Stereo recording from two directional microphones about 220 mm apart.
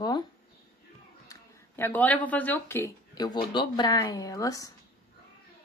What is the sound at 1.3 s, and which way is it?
Speech, 10° left (ahead or behind).